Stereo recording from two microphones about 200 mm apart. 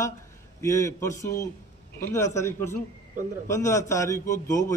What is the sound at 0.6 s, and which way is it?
A man's voice, 15° left (ahead or behind).